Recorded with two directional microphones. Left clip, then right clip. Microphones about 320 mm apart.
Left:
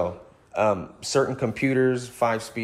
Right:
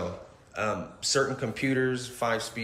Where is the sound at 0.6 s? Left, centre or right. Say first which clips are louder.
Left 8 dB; centre.